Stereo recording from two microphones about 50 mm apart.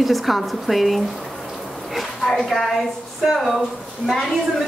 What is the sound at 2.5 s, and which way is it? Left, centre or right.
A woman's voice, centre.